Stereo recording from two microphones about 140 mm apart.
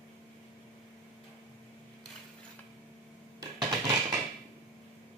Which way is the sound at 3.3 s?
30° right (ahead or behind).